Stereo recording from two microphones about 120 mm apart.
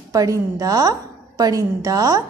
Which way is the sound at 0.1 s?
25° right (ahead or behind).